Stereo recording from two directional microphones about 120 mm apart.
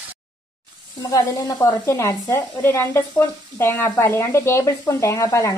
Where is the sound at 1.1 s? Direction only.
30° left (ahead or behind).